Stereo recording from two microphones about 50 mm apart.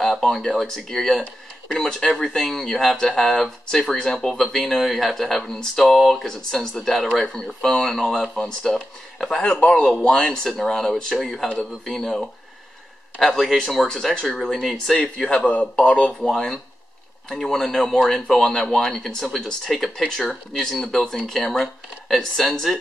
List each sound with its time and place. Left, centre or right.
0.0 s speech: centre
15.0 s speech: centre
16.3 s speech: centre